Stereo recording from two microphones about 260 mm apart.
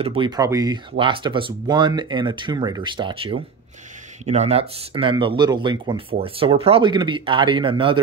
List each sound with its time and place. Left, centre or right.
0.0 s speech: centre